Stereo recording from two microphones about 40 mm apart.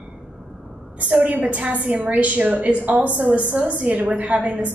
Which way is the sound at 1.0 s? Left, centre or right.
Right.